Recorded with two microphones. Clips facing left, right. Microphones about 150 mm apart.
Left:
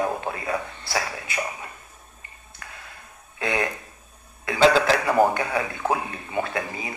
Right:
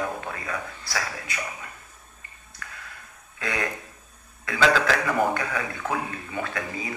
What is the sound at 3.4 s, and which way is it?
A man's voice, 25° left (ahead or behind).